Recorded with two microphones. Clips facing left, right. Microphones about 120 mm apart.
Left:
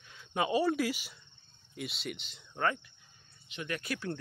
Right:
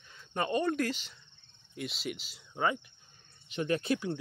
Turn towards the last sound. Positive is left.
turn(degrees=-25)  # may be behind; listen again after turning